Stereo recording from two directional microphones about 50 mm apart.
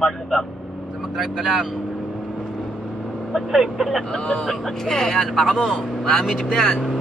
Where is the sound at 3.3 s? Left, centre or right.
Centre.